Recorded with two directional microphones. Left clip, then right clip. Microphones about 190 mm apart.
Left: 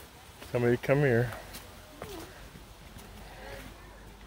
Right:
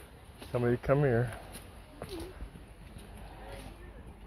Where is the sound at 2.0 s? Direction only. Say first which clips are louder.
Even; 50° right (ahead or behind).